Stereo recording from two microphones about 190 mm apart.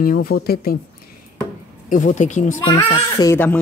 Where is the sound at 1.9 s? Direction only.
45° left (ahead or behind).